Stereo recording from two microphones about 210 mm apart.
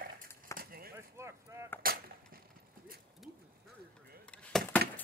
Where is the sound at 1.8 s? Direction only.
45° right (ahead or behind).